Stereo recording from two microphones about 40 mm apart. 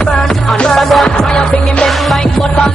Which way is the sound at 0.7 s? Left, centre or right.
Centre.